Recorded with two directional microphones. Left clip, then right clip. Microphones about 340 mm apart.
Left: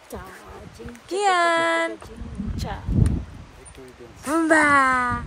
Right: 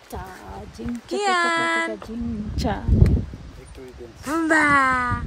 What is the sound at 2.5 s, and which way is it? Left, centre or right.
Speech, right.